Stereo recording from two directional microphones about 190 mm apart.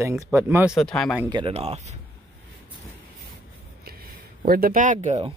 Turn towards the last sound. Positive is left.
turn(degrees=-35)  # may be behind; listen again after turning